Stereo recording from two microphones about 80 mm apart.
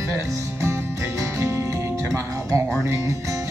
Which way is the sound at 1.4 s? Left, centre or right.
Right.